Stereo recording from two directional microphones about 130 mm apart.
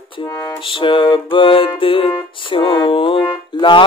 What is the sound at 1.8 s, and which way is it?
Music, 45° left (ahead or behind).